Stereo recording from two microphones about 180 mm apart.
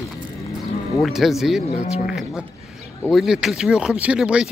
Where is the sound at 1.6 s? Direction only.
40° left (ahead or behind).